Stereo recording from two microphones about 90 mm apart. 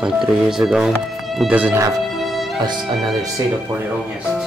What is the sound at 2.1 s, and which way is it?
Music, centre (ahead or behind).